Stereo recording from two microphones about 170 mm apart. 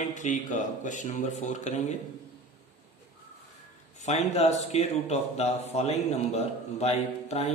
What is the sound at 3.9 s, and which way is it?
A man's voice, 40° left (ahead or behind).